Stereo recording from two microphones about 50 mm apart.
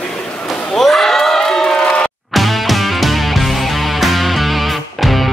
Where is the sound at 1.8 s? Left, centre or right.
Left.